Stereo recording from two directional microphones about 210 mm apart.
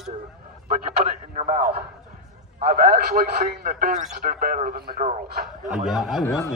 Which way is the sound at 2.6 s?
45° right (ahead or behind).